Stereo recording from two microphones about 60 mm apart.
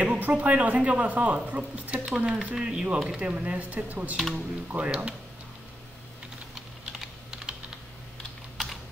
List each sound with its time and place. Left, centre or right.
0.0 s speech: right
6.5 s typing: centre